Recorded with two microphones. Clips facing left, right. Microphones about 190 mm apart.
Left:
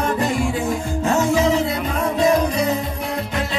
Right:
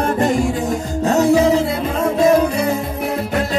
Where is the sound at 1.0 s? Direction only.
35° right (ahead or behind).